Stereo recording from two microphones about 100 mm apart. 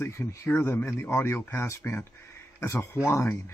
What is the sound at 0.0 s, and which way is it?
Speech, 25° left (ahead or behind).